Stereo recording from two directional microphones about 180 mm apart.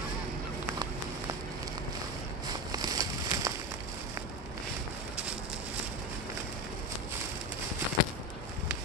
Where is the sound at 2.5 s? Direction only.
20° right (ahead or behind).